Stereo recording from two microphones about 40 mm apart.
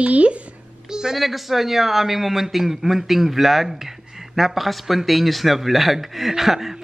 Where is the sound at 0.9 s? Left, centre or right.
Centre.